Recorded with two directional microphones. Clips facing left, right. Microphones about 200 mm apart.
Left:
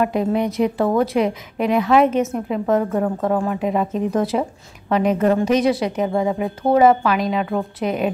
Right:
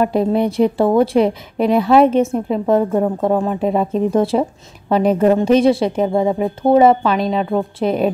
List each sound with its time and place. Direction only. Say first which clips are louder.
0.0 s a woman's voice: right 3 dB; 35° right (ahead or behind)
2.7 s speech: right 4 dB; 20° right (ahead or behind)